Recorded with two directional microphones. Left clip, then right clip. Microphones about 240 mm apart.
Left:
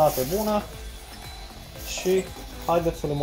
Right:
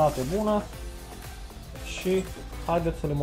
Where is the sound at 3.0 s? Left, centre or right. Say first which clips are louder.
Left 3 dB; left.